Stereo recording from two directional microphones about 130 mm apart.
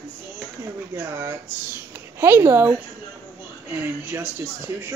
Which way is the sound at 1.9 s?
20° right (ahead or behind).